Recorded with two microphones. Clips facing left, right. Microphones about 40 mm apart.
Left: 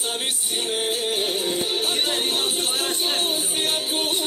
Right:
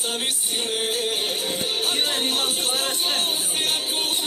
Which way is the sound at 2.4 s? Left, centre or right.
Right.